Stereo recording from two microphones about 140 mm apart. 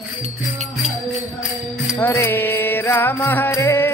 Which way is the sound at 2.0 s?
15° left (ahead or behind).